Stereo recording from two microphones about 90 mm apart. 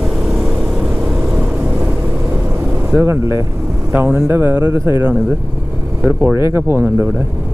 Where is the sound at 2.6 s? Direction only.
25° right (ahead or behind).